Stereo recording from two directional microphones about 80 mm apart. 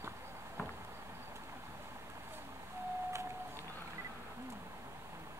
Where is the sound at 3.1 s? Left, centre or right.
Right.